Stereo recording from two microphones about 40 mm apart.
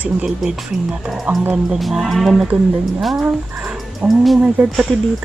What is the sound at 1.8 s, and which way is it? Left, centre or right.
Speech, centre.